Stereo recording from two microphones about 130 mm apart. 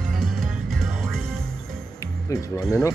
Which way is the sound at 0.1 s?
Centre (ahead or behind).